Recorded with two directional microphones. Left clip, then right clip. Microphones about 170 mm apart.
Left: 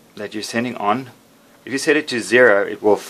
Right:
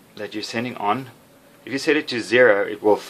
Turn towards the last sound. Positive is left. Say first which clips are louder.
# left 3 dB
turn(degrees=30)  # may be behind; listen again after turning